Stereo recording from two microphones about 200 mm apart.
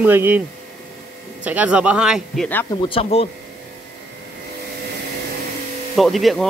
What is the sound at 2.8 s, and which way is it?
Speech, 25° left (ahead or behind).